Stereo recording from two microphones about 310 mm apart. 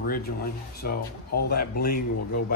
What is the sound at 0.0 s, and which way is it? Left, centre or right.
Speech, left.